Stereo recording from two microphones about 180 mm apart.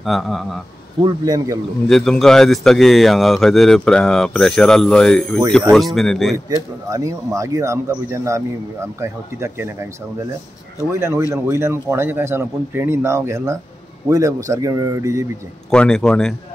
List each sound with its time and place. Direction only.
0.0 s a man's voice: centre (ahead or behind)
1.0 s speech: 20° right (ahead or behind)
1.9 s a man's voice: centre (ahead or behind)
6.5 s speech: 20° right (ahead or behind)
10.9 s speech: 15° right (ahead or behind)
15.7 s a man's voice: 5° left (ahead or behind)